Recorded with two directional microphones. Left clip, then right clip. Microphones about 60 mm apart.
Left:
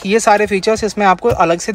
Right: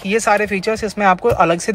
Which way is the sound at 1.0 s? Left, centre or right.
Left.